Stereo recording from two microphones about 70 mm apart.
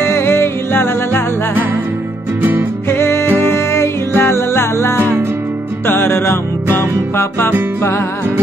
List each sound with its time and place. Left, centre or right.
0.1 s music: left
2.9 s music: left